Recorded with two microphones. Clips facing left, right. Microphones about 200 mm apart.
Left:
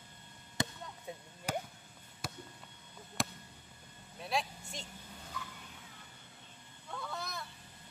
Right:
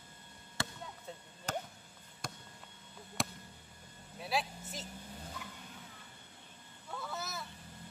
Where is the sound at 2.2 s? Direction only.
5° left (ahead or behind).